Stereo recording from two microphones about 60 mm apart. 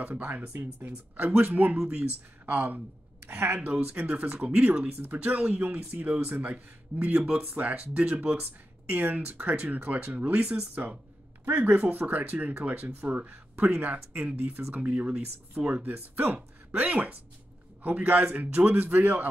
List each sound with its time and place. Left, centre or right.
0.0 s speech: right
11.4 s speech: right
15.6 s speech: right
16.3 s speech: right